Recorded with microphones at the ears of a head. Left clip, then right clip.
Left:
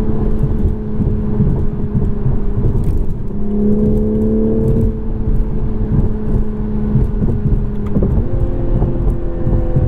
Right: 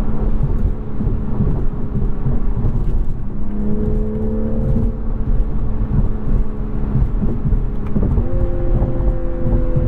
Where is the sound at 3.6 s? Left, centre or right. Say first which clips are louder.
Left 8 dB; left.